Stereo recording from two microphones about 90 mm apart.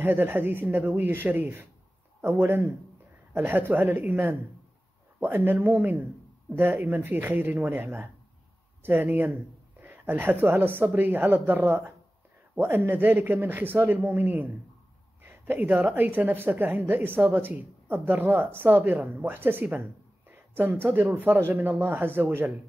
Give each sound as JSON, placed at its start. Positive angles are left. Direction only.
{"t": 0.0, "sound": "a woman's voice", "side_deg": -25}